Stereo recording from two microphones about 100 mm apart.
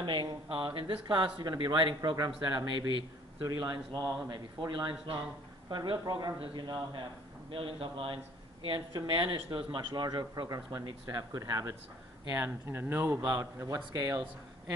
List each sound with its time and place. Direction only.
0.0 s speech: 55° right (ahead or behind)
2.0 s speech: 40° right (ahead or behind)
3.9 s speech: 5° right (ahead or behind)
4.3 s speech: 50° right (ahead or behind)
7.5 s a man's voice: 70° right (ahead or behind)
8.6 s speech: 55° right (ahead or behind)
10.5 s speech: 35° right (ahead or behind)
12.3 s speech: 20° right (ahead or behind)
13.4 s speech: 30° right (ahead or behind)